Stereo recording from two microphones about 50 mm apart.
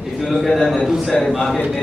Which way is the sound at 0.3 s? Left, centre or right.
Centre.